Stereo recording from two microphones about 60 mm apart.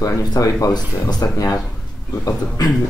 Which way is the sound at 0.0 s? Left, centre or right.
Left.